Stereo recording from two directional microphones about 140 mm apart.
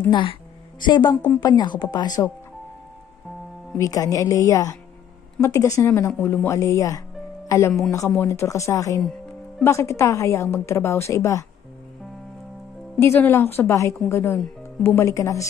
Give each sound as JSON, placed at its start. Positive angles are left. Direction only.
{"t": 0.1, "sound": "a woman's voice", "side_deg": 40}
{"t": 3.7, "sound": "a woman's voice", "side_deg": 25}
{"t": 13.0, "sound": "a woman's voice", "side_deg": 15}